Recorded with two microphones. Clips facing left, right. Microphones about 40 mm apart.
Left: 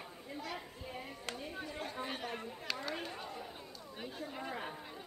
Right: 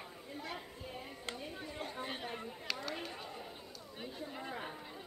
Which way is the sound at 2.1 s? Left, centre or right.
Centre.